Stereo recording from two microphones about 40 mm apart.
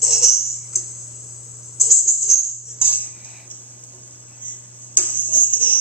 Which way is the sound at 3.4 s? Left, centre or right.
Left.